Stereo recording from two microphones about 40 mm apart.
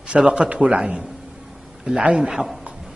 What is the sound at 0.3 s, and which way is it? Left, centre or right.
Speech, right.